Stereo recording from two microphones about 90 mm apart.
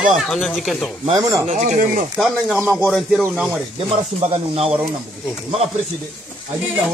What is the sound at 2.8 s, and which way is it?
Speech, centre (ahead or behind).